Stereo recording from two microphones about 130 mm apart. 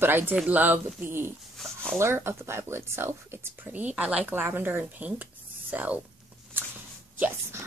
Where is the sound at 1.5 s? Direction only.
5° left (ahead or behind).